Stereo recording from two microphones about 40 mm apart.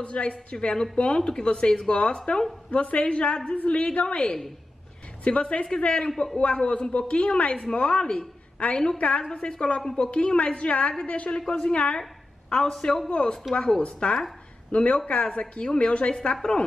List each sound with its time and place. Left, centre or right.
0.0 s a man's voice: left
2.7 s a woman's voice: left
6.0 s speech: centre
6.3 s a man's voice: left
11.3 s a man's voice: centre